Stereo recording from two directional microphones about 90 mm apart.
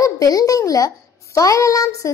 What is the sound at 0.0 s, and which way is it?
A child's voice, 40° left (ahead or behind).